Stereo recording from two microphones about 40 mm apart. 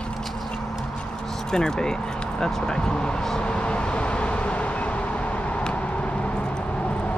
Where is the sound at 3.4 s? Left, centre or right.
Left.